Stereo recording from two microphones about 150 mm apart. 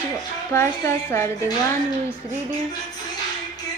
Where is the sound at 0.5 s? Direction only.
15° left (ahead or behind).